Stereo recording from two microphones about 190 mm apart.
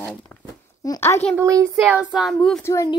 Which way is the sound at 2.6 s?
15° left (ahead or behind).